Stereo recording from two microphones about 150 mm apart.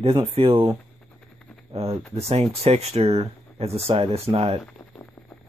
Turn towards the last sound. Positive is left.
turn(degrees=5)  # may be behind; listen again after turning